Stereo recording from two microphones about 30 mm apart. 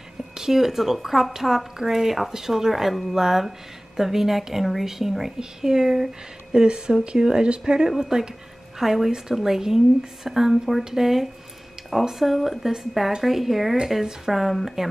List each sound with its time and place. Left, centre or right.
0.3 s speech: centre
5.4 s speech: right
8.7 s a woman's voice: centre
10.8 s speech: centre